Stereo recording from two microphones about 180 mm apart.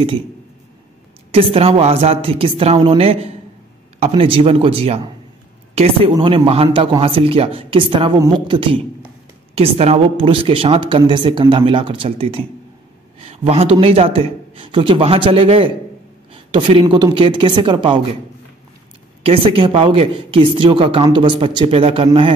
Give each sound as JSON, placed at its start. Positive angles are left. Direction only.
{"t": 1.3, "sound": "a man's voice", "side_deg": -30}
{"t": 6.1, "sound": "a man's voice", "side_deg": -30}
{"t": 19.2, "sound": "speech", "side_deg": -30}